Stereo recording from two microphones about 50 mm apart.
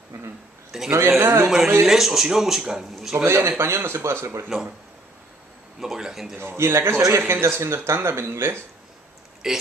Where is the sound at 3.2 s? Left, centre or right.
Right.